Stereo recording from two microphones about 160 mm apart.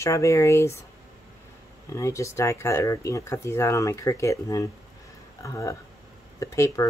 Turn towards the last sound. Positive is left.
turn(degrees=20)  # may be behind; listen again after turning